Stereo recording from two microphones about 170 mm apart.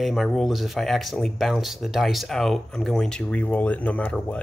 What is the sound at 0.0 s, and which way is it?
Speech, centre (ahead or behind).